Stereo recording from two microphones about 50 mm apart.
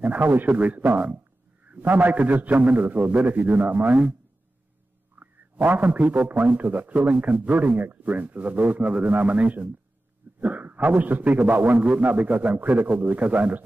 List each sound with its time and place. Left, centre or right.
0.0 s a man's voice: right
5.2 s a man's voice: right